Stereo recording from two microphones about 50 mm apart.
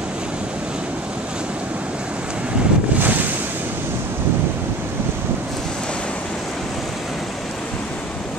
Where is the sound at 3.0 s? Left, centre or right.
Right.